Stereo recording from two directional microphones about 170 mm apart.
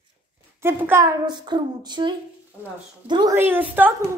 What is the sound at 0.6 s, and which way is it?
Speech, 15° right (ahead or behind).